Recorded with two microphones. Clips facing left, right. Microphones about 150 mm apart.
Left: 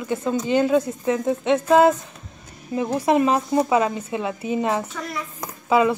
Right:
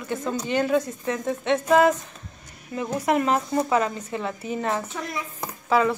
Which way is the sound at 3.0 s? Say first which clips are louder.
Left 3 dB; 20° left (ahead or behind).